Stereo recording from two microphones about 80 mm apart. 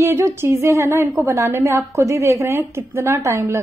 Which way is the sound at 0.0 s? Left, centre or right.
Right.